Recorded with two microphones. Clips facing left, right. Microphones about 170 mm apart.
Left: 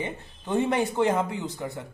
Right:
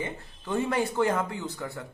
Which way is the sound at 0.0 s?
20° left (ahead or behind).